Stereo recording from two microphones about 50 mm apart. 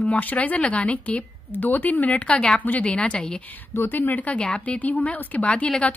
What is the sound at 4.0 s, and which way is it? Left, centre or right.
Speech, left.